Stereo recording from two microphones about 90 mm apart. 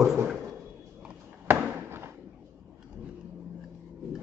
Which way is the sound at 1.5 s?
20° right (ahead or behind).